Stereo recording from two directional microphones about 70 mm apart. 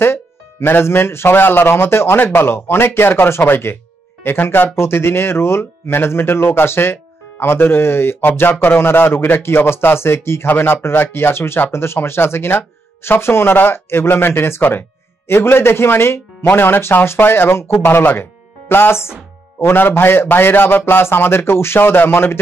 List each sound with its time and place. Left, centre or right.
0.0 s speech: left